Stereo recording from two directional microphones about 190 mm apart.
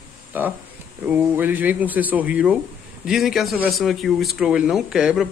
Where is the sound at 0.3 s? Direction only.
10° right (ahead or behind).